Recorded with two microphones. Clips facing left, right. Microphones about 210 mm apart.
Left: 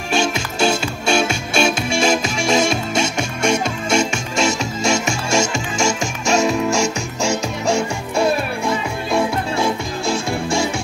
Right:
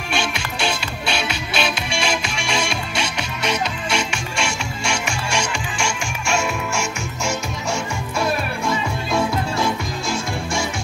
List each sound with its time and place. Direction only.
0.1 s music: 40° left (ahead or behind)